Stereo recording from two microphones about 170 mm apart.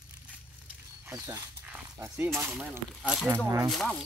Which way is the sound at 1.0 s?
15° right (ahead or behind).